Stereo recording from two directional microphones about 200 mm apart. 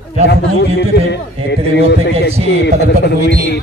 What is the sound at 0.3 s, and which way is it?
A man's voice, 65° left (ahead or behind).